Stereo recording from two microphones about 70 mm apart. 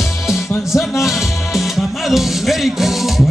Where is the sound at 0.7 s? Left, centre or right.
Centre.